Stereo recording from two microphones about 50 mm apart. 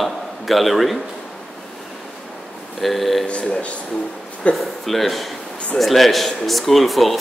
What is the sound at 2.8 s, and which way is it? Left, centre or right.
Speech, centre.